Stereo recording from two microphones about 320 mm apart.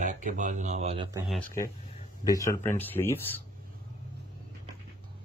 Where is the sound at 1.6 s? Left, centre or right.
Centre.